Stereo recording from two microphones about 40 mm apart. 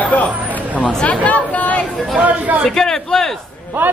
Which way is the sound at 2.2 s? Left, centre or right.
Right.